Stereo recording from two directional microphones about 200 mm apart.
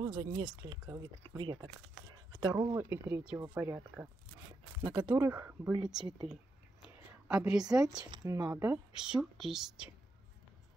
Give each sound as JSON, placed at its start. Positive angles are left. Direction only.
{"t": 0.0, "sound": "speech", "side_deg": -20}
{"t": 4.8, "sound": "speech", "side_deg": -20}
{"t": 5.8, "sound": "speech", "side_deg": 0}
{"t": 7.2, "sound": "speech", "side_deg": -5}
{"t": 7.8, "sound": "speech", "side_deg": -20}
{"t": 8.9, "sound": "speech", "side_deg": -5}